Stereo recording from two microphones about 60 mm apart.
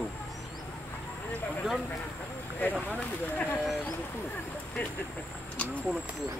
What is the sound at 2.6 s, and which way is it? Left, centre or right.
Speech, left.